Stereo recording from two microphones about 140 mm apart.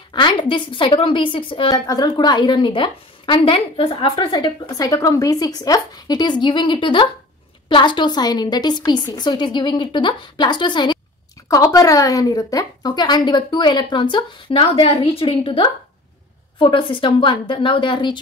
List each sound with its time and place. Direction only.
0.1 s a woman's voice: 35° left (ahead or behind)
11.4 s a woman's voice: 25° left (ahead or behind)